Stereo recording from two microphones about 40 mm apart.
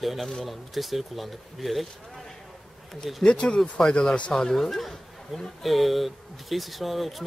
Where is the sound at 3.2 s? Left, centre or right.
Left.